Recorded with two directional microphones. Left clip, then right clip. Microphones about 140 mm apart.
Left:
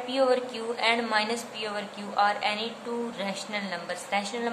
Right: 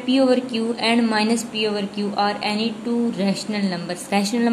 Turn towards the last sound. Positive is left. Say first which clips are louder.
# right 7 dB
turn(degrees=-40)  # may be behind; listen again after turning